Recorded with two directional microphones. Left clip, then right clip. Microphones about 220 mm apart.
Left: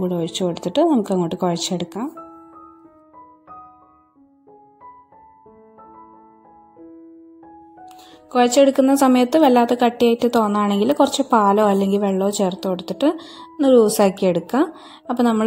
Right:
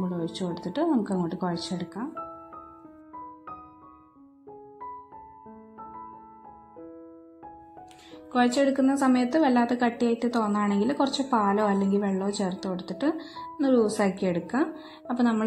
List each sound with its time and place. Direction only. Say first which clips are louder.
0.0 s a woman's voice: left 10 dB; 25° left (ahead or behind)
8.3 s a woman's voice: left 9 dB; 20° left (ahead or behind)